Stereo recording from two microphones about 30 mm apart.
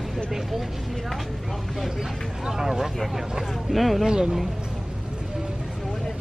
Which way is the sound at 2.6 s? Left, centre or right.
Centre.